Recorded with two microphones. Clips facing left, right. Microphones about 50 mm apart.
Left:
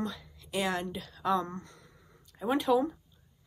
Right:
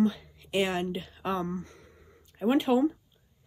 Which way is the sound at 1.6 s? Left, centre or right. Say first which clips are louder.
Right 5 dB; right.